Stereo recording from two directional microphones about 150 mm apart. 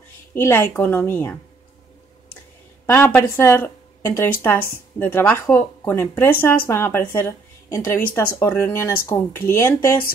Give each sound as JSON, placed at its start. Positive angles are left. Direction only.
{"t": 0.3, "sound": "a woman's voice", "side_deg": 15}
{"t": 2.9, "sound": "a woman's voice", "side_deg": 15}